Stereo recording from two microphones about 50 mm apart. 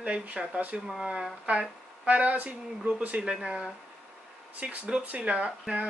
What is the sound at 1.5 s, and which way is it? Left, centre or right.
Speech, right.